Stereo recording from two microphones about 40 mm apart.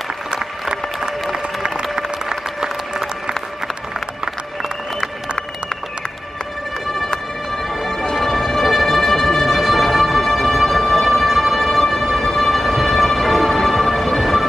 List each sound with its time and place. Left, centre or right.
0.3 s music: centre
1.3 s applause: centre
8.2 s music: centre